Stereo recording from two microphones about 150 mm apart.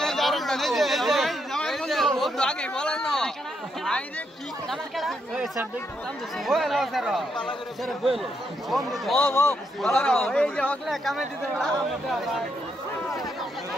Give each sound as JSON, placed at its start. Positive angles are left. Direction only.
{"t": 0.0, "sound": "a sound", "side_deg": 0}
{"t": 4.6, "sound": "speech", "side_deg": 0}
{"t": 9.2, "sound": "a man's voice", "side_deg": 20}
{"t": 9.9, "sound": "speech", "side_deg": 0}